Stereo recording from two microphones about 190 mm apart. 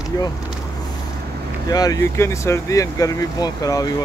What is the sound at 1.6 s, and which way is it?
Speech, 20° left (ahead or behind).